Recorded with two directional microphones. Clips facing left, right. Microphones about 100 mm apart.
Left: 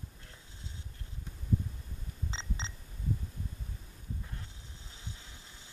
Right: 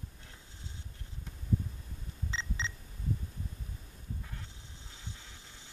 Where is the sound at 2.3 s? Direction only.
35° left (ahead or behind).